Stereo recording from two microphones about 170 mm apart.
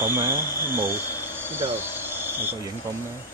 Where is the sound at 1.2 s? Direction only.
10° right (ahead or behind).